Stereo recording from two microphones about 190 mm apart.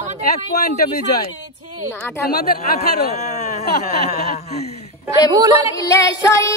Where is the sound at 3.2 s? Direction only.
35° left (ahead or behind).